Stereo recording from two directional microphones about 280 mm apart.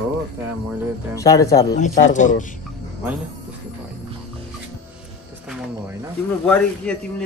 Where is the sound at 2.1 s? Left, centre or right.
Left.